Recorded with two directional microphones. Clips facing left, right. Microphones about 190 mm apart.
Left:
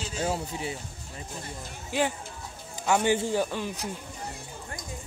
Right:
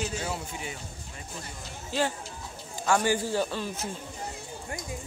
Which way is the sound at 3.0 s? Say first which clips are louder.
Left 2 dB; 20° left (ahead or behind).